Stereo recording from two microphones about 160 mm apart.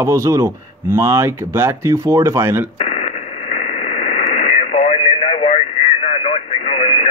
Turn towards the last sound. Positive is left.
turn(degrees=40)  # may be behind; listen again after turning